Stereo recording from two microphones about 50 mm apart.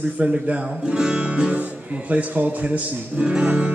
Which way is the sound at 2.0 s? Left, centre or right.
Right.